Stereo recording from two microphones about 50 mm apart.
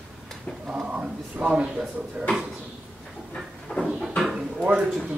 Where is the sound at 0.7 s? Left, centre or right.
Right.